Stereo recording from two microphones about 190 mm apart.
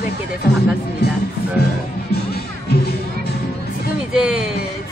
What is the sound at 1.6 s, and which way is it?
Speech, 60° left (ahead or behind).